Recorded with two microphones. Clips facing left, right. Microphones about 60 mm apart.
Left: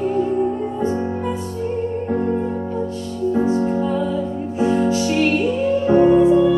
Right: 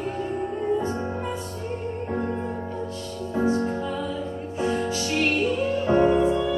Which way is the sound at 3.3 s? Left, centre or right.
Centre.